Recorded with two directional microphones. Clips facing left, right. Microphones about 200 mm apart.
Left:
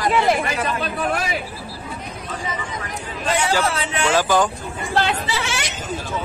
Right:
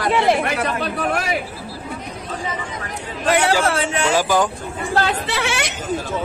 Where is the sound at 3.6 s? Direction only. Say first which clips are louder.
Right 3 dB; 50° right (ahead or behind).